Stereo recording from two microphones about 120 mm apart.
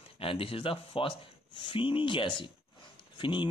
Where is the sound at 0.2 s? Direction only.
50° left (ahead or behind).